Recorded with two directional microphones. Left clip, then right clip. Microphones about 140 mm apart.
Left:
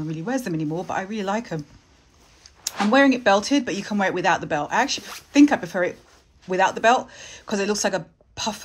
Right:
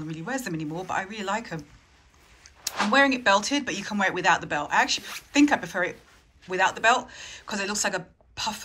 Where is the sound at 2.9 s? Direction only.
45° left (ahead or behind).